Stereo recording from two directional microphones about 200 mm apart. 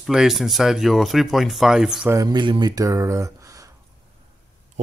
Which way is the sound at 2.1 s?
20° right (ahead or behind).